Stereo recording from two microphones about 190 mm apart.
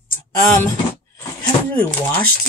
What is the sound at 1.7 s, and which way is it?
Speech, 10° left (ahead or behind).